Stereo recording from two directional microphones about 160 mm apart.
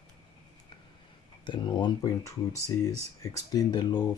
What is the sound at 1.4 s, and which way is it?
Speech, 30° left (ahead or behind).